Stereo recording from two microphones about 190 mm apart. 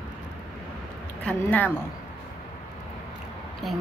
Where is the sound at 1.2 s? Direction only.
5° left (ahead or behind).